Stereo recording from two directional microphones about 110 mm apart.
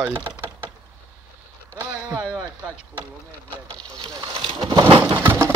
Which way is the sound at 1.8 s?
10° right (ahead or behind).